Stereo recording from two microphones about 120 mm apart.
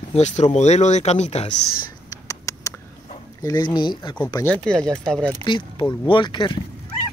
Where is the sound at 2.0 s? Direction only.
25° left (ahead or behind).